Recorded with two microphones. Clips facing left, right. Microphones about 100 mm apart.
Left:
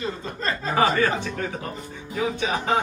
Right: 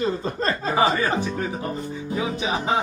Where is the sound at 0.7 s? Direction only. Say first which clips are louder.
Left 1 dB; 10° right (ahead or behind).